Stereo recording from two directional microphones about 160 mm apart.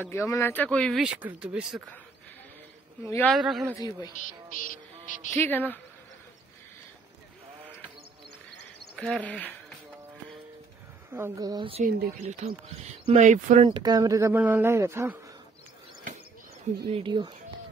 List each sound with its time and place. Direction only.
0.0 s speech: 15° left (ahead or behind); by 1.8 s 5° right (ahead or behind)
3.3 s speech: centre (ahead or behind)
4.6 s music: 55° left (ahead or behind)
5.3 s speech: 10° left (ahead or behind)
8.9 s speech: 5° left (ahead or behind)
11.1 s speech: 15° right (ahead or behind)
11.8 s speech: 80° right
12.2 s speech: 50° right (ahead or behind)
13.7 s speech: 25° right (ahead or behind)
16.9 s speech: 30° right (ahead or behind)